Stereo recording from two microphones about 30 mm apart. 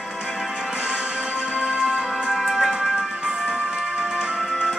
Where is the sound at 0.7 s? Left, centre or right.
Right.